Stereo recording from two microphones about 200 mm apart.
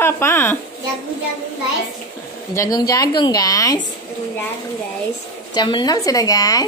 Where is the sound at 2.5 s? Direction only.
15° left (ahead or behind).